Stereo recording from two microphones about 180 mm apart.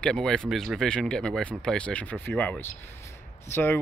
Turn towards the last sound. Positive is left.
turn(degrees=10)  # may be behind; listen again after turning